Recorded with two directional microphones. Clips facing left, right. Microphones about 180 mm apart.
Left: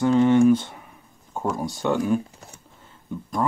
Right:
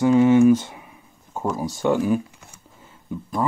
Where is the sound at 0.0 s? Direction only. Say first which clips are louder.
Right 2 dB; 10° right (ahead or behind).